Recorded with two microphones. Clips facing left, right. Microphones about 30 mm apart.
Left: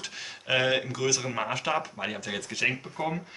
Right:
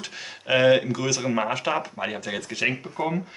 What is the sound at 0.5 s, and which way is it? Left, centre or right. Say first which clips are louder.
A man's voice: right 7 dB; centre.